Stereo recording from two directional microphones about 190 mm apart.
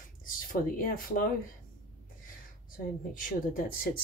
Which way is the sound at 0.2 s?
50° left (ahead or behind).